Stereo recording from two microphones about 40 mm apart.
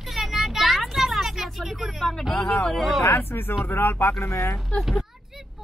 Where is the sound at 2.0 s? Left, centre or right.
Centre.